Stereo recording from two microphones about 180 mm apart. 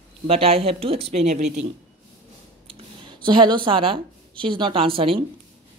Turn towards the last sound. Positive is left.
turn(degrees=-30)  # may be behind; listen again after turning